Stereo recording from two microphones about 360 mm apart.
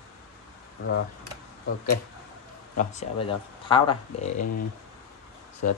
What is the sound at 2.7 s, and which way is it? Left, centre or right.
Speech, centre.